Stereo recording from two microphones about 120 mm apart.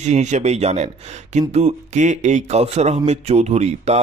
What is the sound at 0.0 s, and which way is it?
A man's voice, 75° right (ahead or behind).